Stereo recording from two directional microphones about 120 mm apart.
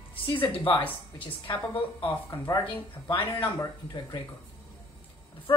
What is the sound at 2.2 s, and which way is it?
Speech, 30° left (ahead or behind).